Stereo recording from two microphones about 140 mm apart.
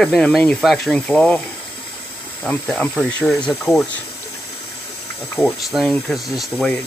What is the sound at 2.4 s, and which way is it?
Speech, 10° left (ahead or behind).